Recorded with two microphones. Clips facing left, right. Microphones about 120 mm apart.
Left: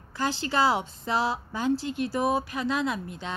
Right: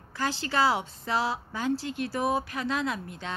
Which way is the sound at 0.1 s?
20° left (ahead or behind).